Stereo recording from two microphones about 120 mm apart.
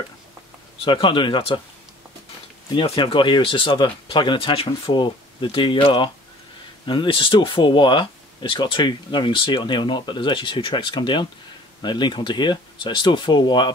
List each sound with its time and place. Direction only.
0.8 s speech: 45° left (ahead or behind)
2.7 s speech: 45° left (ahead or behind)